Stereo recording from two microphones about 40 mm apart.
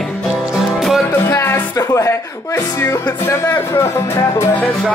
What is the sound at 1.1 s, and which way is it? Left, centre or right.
Music, left.